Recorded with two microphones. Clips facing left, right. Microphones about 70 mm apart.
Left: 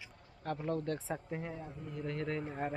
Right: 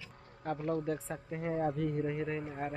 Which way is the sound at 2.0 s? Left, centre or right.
Centre.